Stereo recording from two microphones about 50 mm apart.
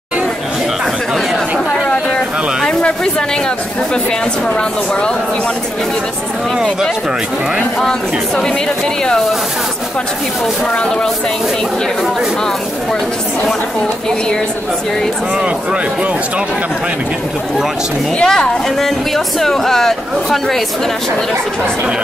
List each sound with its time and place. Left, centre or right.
1.9 s a sound: centre
10.7 s speech: left
15.3 s speech: right
18.2 s speech: centre